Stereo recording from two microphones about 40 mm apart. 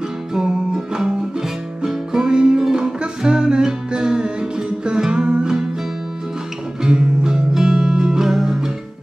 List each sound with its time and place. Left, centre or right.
0.3 s music: centre
6.8 s music: centre